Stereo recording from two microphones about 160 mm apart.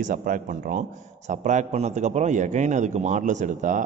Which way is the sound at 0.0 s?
55° right (ahead or behind).